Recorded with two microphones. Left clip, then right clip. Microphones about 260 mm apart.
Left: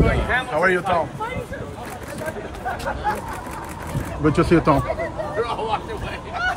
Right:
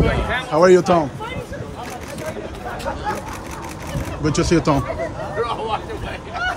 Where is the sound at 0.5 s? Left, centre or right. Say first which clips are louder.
Right 8 dB; centre.